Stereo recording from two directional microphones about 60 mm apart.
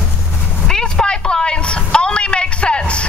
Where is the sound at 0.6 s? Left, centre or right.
Centre.